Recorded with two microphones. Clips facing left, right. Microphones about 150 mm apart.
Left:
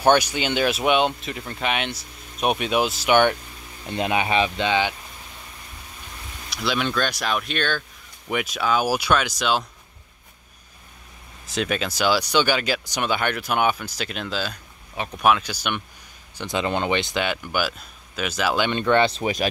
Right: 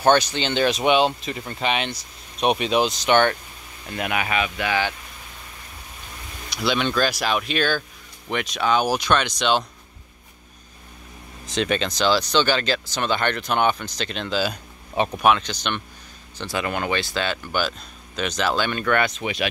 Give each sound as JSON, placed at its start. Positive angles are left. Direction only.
{"t": 0.0, "sound": "speech", "side_deg": 10}
{"t": 3.8, "sound": "speech", "side_deg": 25}
{"t": 6.5, "sound": "speech", "side_deg": 0}
{"t": 8.3, "sound": "speech", "side_deg": 5}
{"t": 11.4, "sound": "speech", "side_deg": 5}
{"t": 16.3, "sound": "speech", "side_deg": 20}
{"t": 18.7, "sound": "speech", "side_deg": 25}